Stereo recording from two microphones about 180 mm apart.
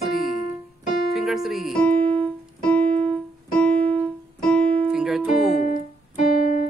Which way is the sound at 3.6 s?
35° right (ahead or behind).